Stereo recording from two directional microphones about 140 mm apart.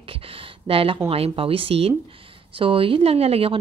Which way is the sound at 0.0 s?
40° right (ahead or behind).